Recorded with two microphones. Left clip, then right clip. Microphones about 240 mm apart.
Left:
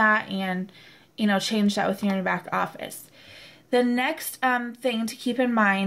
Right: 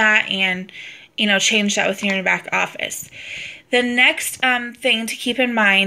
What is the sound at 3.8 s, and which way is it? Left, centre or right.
A woman's voice, left.